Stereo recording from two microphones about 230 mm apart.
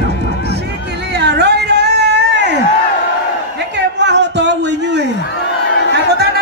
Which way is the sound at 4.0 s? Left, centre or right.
Right.